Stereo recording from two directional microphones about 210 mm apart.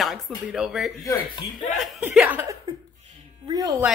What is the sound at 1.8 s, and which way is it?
Speech, 5° right (ahead or behind).